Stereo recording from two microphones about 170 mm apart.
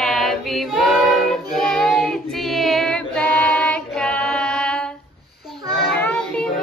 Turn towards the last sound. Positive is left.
turn(degrees=10)  # may be behind; listen again after turning